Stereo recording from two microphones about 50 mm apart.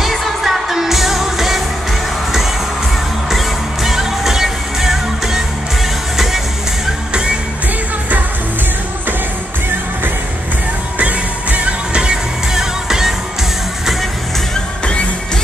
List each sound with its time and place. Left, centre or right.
0.0 s music of asia: centre
3.3 s music: centre
11.0 s music: right; by 13.1 s centre